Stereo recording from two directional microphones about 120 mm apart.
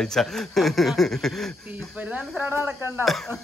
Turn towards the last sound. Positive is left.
turn(degrees=-20)  # may be behind; listen again after turning